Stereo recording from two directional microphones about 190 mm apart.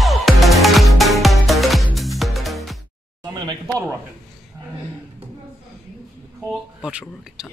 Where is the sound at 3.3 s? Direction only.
20° right (ahead or behind).